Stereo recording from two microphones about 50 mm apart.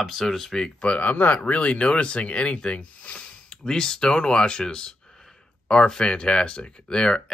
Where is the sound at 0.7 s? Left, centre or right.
Left.